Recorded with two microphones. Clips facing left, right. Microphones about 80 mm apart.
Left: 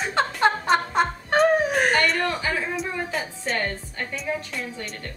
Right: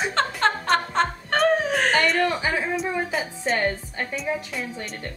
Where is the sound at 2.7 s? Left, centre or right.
Centre.